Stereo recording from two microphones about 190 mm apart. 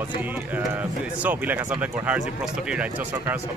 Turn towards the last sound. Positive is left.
turn(degrees=-10)  # may be behind; listen again after turning